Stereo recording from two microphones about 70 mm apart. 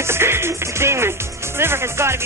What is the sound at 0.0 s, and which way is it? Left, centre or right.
Music, right.